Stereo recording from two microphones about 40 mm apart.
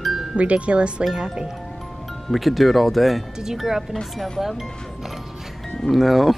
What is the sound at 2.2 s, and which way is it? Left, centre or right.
Speech, centre.